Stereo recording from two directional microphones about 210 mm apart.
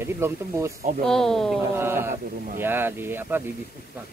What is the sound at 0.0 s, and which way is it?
Speech, 15° right (ahead or behind).